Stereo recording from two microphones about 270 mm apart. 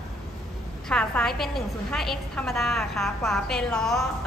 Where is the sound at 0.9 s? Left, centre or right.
Centre.